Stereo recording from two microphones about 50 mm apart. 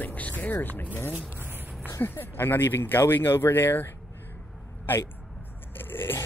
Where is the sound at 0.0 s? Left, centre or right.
Left.